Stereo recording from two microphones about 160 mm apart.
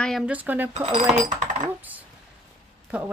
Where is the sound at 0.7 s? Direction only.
40° right (ahead or behind).